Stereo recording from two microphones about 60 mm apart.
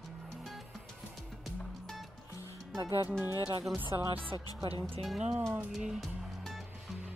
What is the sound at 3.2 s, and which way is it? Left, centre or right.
Speech, left.